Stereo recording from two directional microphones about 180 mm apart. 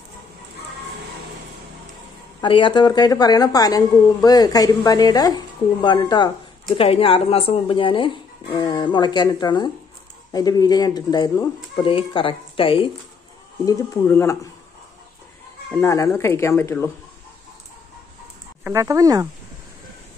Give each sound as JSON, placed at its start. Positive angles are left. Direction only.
{"t": 2.4, "sound": "a woman's voice", "side_deg": 25}
{"t": 13.7, "sound": "speech", "side_deg": 15}
{"t": 15.7, "sound": "speech", "side_deg": 15}
{"t": 18.6, "sound": "speech", "side_deg": -15}